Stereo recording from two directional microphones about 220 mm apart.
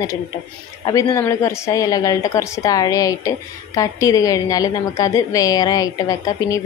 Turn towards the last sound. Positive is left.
turn(degrees=15)  # may be behind; listen again after turning